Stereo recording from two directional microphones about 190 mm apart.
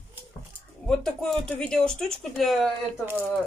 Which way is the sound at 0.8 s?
5° left (ahead or behind).